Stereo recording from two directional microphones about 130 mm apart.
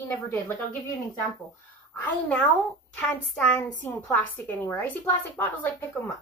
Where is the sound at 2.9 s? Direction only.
5° left (ahead or behind).